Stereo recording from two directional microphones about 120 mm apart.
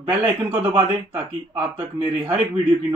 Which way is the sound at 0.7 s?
15° right (ahead or behind).